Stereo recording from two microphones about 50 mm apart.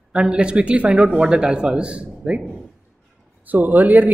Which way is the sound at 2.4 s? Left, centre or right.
Centre.